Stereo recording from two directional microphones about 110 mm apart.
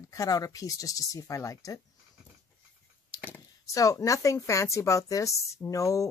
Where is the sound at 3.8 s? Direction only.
30° left (ahead or behind).